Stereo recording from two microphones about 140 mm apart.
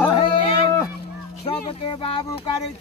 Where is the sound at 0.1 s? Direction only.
35° left (ahead or behind).